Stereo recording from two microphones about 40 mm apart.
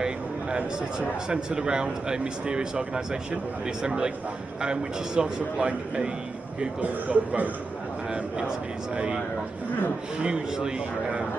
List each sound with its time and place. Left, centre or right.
0.0 s speech: centre
6.6 s a man's voice: right
8.1 s speech: centre
10.2 s speech: right